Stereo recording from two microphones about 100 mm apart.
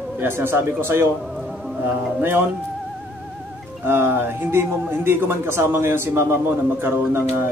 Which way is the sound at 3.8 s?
25° right (ahead or behind).